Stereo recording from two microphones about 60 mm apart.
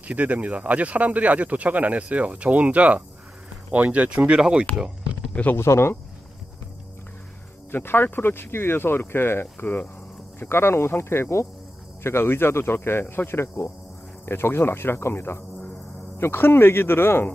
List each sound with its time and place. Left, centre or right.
0.1 s speech: right
4.7 s a sound: centre
5.3 s speech: left
5.6 s speech: left
7.7 s speech: left